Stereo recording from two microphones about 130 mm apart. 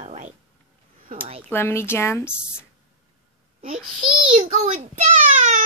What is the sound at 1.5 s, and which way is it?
Speech, 20° left (ahead or behind).